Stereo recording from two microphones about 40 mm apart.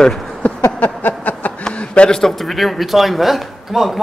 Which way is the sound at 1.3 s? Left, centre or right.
Left.